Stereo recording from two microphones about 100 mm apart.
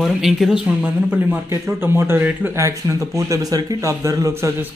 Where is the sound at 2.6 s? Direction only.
30° right (ahead or behind).